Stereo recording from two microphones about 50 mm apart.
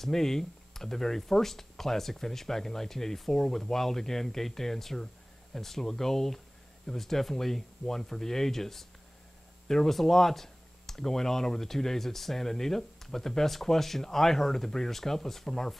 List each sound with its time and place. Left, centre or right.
0.0 s speech: centre